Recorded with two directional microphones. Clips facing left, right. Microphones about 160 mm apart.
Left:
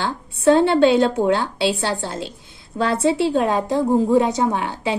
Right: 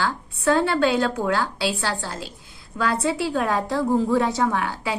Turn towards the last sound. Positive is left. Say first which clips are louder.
# left 2 dB
turn(degrees=20)  # may be behind; listen again after turning